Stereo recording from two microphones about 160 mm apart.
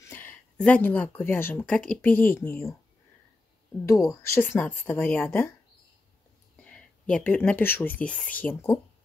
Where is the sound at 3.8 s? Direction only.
20° left (ahead or behind).